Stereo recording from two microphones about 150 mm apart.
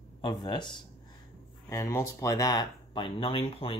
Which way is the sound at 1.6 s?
20° left (ahead or behind).